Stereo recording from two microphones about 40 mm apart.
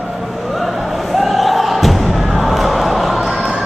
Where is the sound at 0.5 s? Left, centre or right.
Centre.